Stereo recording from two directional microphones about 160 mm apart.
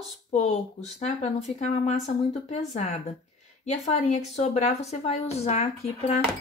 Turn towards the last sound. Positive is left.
turn(degrees=45)  # may be behind; listen again after turning